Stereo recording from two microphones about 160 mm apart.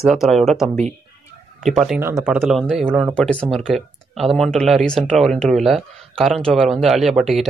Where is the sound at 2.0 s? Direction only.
15° right (ahead or behind).